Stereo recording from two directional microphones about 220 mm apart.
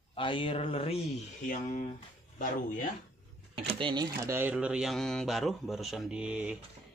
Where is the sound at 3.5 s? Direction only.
25° right (ahead or behind); by 6.6 s 5° right (ahead or behind).